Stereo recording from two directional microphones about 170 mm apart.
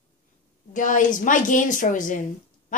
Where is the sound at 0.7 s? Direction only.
50° left (ahead or behind).